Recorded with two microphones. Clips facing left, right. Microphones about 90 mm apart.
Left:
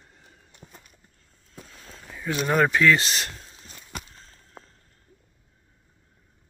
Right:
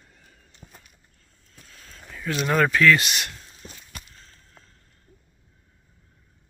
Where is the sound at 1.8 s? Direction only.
20° left (ahead or behind).